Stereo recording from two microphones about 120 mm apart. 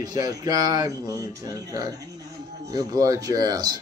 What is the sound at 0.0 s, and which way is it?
Speech, 30° right (ahead or behind).